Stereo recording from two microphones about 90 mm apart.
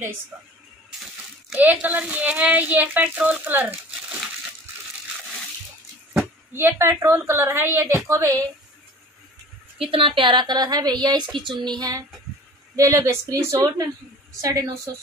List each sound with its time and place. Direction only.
0.3 s speech: 10° right (ahead or behind)
1.5 s speech: 15° right (ahead or behind)
6.1 s a woman's voice: 25° right (ahead or behind)
9.8 s speech: 85° right; by 12.1 s 45° right (ahead or behind)
12.7 s speech: 35° right (ahead or behind)